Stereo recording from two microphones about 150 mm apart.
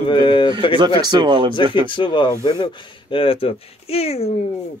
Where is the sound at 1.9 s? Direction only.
30° left (ahead or behind).